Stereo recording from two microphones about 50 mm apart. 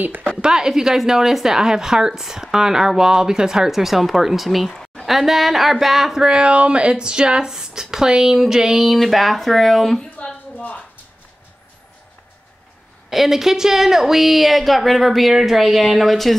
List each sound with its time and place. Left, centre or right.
0.0 s a woman's voice: right
0.4 s a woman's voice: centre
6.2 s a woman's voice: centre
13.1 s a woman's voice: centre